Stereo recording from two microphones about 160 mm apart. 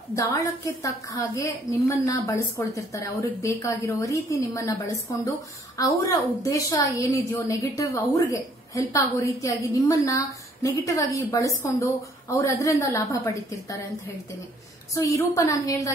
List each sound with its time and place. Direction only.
0.1 s a woman's voice: 20° left (ahead or behind)
15.0 s a woman's voice: 20° left (ahead or behind)